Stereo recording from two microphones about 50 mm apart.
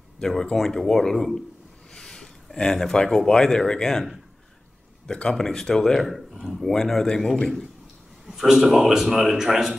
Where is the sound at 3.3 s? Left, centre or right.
Centre.